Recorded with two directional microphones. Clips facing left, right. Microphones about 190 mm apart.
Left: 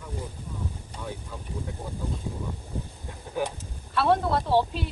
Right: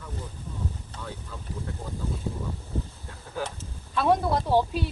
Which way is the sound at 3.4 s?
15° left (ahead or behind).